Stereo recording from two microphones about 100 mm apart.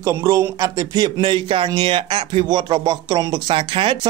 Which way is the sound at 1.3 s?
60° right (ahead or behind).